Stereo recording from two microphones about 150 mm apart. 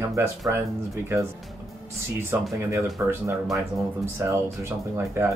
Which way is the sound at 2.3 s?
15° right (ahead or behind).